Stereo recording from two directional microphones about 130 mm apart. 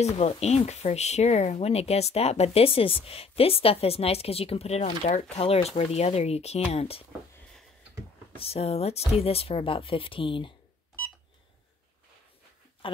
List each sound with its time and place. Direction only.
0.0 s speech: 55° left (ahead or behind)
8.4 s speech: 50° left (ahead or behind)
12.8 s a sound: 40° left (ahead or behind)